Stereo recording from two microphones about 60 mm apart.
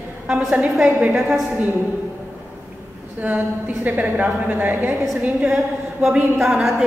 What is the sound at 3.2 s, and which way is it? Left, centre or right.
A woman's voice, right.